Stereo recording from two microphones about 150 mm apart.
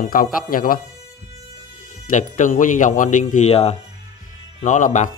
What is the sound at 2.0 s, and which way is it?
Speech, 55° left (ahead or behind).